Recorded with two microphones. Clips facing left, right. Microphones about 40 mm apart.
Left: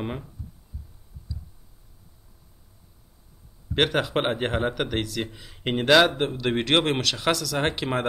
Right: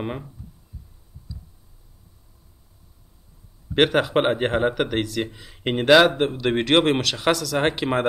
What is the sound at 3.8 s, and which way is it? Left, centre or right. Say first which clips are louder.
Speech: right 4 dB; centre.